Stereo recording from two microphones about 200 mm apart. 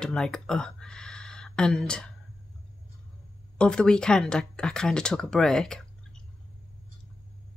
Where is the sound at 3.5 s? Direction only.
5° left (ahead or behind).